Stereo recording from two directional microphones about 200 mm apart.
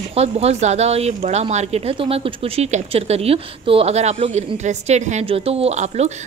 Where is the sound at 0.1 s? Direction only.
30° right (ahead or behind).